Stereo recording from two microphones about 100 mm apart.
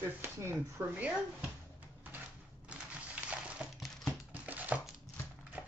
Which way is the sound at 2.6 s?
15° right (ahead or behind).